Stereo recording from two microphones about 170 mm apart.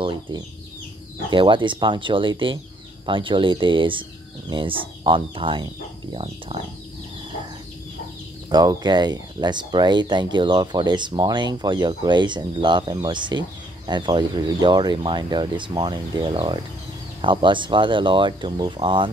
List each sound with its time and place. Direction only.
1.3 s speech: 30° right (ahead or behind)
8.5 s speech: 25° right (ahead or behind)